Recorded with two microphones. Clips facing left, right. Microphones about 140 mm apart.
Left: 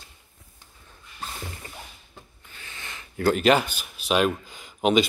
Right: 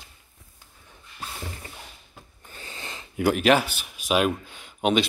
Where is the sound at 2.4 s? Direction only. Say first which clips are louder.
Right 4 dB; 35° right (ahead or behind).